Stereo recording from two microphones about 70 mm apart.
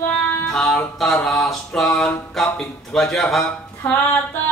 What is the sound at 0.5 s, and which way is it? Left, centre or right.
A man's voice, centre.